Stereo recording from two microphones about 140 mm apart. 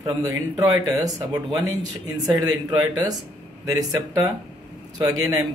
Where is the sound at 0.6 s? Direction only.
25° right (ahead or behind).